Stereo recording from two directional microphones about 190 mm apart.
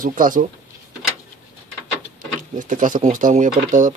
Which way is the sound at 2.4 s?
45° right (ahead or behind).